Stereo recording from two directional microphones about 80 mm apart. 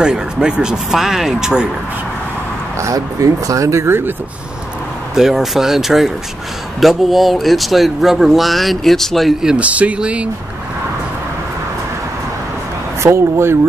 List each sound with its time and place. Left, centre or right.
0.0 s speech: centre
2.8 s speech: right
5.1 s speech: centre
9.5 s speech: centre
13.0 s speech: right